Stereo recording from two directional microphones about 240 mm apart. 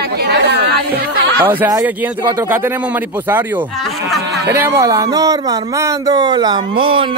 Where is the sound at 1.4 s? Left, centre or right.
Centre.